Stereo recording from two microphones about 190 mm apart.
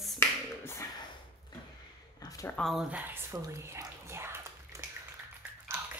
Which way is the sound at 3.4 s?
15° right (ahead or behind).